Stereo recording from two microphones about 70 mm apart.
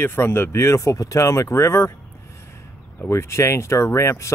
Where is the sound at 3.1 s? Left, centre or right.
Left.